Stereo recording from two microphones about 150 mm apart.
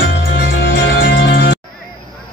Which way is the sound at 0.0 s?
90° left.